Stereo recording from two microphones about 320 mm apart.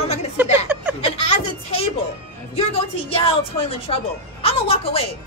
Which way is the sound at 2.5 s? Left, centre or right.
Centre.